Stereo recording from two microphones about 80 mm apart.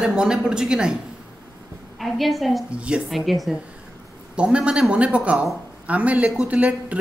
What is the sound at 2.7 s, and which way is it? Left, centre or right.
Speech, centre.